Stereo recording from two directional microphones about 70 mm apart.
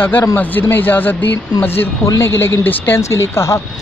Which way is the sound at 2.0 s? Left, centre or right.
Left.